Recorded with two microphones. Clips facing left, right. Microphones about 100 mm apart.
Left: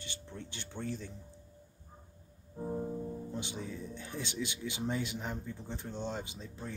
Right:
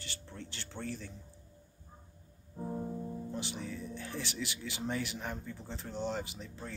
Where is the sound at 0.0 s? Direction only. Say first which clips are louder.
Left 1 dB; 15° left (ahead or behind).